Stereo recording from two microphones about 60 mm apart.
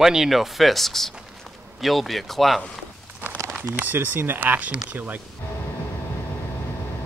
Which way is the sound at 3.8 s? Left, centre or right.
Right.